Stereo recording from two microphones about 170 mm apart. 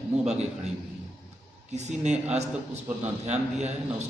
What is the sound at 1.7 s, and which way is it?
A man's voice, 40° right (ahead or behind).